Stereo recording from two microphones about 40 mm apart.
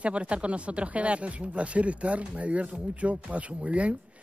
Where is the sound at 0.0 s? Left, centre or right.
Right.